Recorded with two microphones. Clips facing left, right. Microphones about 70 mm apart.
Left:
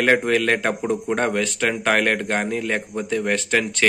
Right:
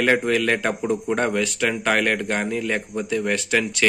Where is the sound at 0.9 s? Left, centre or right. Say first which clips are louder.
Right 1 dB; left.